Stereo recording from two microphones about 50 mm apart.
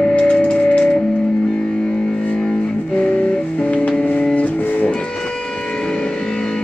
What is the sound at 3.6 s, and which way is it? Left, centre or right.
Music, left.